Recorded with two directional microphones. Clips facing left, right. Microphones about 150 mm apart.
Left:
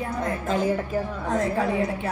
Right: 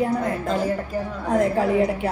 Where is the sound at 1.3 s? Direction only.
20° right (ahead or behind).